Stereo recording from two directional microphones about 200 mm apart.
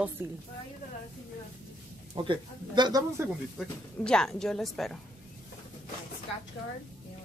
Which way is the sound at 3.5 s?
5° left (ahead or behind).